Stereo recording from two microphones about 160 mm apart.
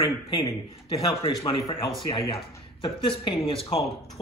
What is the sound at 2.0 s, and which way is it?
Speech, 35° left (ahead or behind).